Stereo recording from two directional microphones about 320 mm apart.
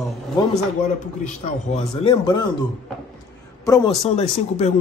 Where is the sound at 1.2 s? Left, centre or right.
Centre.